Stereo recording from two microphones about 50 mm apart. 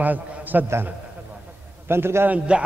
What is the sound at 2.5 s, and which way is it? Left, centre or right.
Speech, right.